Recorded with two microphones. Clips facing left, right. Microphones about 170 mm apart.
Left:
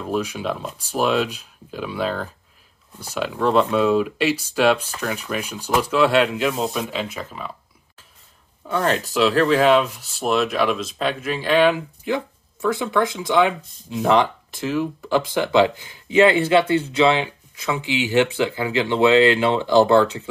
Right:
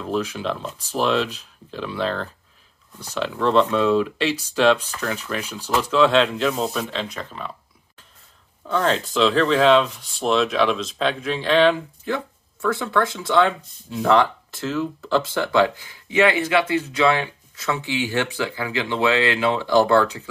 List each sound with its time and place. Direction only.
0.0 s speech: 10° left (ahead or behind)
8.6 s speech: 10° left (ahead or behind)